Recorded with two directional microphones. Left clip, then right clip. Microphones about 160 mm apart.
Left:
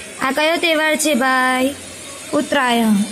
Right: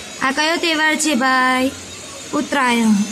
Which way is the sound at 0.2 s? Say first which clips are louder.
Left 1 dB; 15° left (ahead or behind).